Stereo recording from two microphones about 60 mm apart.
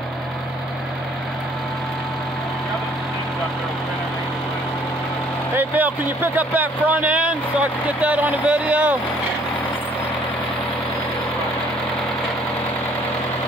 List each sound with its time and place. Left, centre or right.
5.6 s speech: right